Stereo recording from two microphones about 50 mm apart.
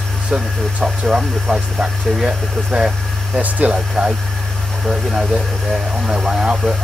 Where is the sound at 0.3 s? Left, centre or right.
Right.